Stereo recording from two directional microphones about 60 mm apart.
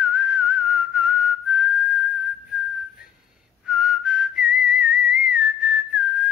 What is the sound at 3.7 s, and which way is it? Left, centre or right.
Whistling, centre.